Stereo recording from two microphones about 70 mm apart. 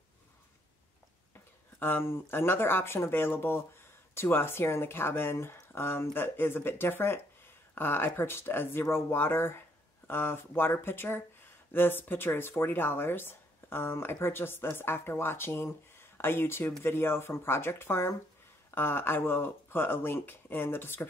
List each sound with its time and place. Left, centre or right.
1.8 s speech: left